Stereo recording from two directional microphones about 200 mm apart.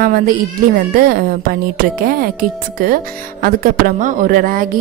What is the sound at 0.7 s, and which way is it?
A woman's voice, 50° right (ahead or behind).